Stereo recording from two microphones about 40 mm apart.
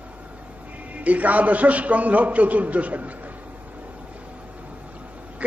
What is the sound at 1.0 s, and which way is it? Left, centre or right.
A man's voice, right.